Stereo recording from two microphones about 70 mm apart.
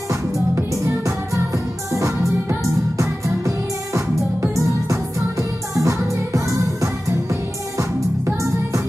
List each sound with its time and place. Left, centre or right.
0.1 s music: right